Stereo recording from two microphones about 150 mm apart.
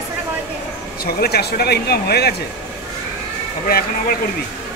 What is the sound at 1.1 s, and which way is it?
Speech, 90° left.